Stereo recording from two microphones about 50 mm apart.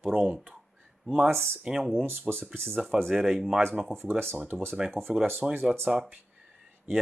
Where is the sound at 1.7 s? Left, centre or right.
Centre.